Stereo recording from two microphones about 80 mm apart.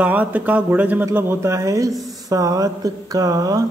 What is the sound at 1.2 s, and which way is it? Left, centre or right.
Speech, right.